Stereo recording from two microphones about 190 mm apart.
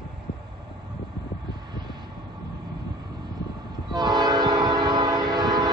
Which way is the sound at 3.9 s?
20° right (ahead or behind).